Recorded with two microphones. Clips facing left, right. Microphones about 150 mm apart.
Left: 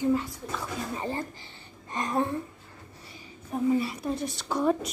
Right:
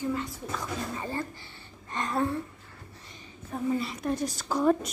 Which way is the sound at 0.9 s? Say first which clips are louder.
Left 1 dB; 20° left (ahead or behind).